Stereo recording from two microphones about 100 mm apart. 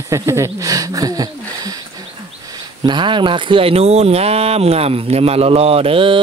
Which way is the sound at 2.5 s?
50° right (ahead or behind).